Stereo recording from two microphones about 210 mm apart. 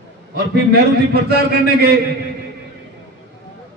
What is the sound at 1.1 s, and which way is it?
Speech, 50° right (ahead or behind).